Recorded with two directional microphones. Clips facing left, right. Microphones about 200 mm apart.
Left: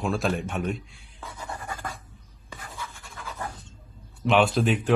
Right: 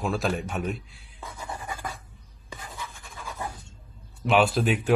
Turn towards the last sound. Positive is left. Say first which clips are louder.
# left 1 dB
turn(degrees=-5)  # may be behind; listen again after turning